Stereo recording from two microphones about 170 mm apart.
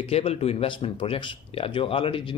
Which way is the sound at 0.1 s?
35° left (ahead or behind).